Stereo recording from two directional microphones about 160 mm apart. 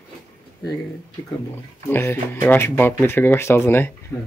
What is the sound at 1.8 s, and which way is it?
Speech, 15° left (ahead or behind).